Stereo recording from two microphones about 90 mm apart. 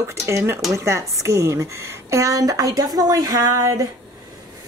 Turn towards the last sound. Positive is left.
turn(degrees=-40)  # may be behind; listen again after turning